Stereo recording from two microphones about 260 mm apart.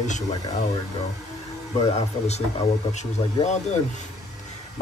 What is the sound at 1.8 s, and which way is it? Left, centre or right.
Speech, left.